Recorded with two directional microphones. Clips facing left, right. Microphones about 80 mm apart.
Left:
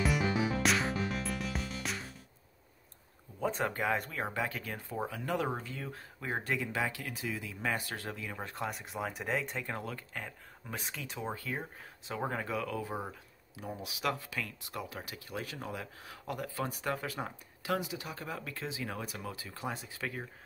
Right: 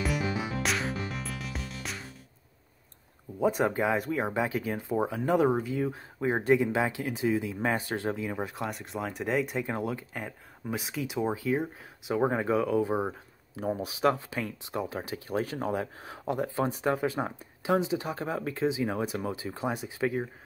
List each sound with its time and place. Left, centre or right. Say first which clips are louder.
0.6 s music: even; centre
3.3 s speech: right 7 dB; centre
8.5 s speech: right 3 dB; centre
9.6 s speech: right 7 dB; centre
12.2 s speech: right 9 dB; right
13.1 s speech: right 7 dB; right